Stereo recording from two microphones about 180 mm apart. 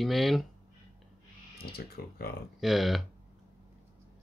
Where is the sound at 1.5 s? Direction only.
60° left (ahead or behind).